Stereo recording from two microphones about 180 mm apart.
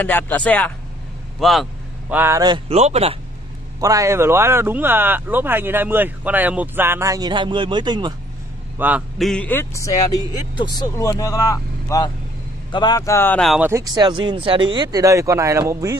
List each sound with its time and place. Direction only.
0.0 s speech: 10° left (ahead or behind); by 2.6 s 20° right (ahead or behind)
2.7 s speech: 35° right (ahead or behind)
3.8 s speech: 20° right (ahead or behind)
8.7 s a man's voice: 10° right (ahead or behind)
9.2 s speech: 5° left (ahead or behind)
13.6 s speech: 15° right (ahead or behind)